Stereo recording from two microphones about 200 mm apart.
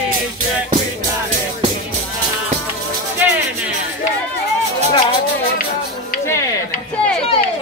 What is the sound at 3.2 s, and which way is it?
Music, 10° right (ahead or behind).